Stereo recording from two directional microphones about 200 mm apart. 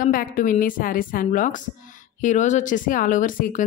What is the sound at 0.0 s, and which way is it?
Speech, 45° left (ahead or behind).